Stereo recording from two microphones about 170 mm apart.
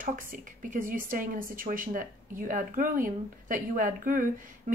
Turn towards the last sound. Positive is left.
turn(degrees=-55)  # may be behind; listen again after turning